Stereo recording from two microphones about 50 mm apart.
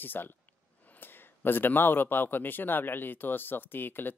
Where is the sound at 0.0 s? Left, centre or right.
Left.